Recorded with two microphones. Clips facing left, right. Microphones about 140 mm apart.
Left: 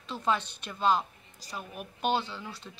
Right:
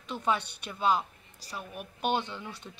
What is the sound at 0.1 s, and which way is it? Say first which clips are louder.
A woman's voice: even; 10° right (ahead or behind).